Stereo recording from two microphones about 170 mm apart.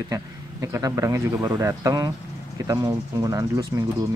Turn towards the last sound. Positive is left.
turn(degrees=-20)  # may be behind; listen again after turning